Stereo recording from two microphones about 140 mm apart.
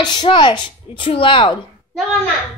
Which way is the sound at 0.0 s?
30° left (ahead or behind).